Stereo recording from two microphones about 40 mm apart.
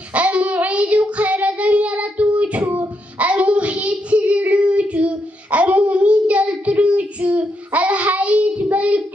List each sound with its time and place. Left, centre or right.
0.1 s child singing: right